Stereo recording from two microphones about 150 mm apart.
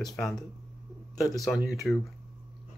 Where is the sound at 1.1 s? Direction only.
25° left (ahead or behind).